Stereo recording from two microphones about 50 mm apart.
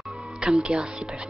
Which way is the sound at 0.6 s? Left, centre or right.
Centre.